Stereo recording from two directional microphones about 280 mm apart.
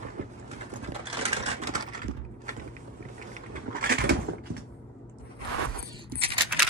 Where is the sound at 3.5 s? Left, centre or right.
Right.